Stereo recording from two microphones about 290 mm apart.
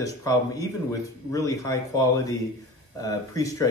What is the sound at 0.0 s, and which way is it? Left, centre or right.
Speech, centre.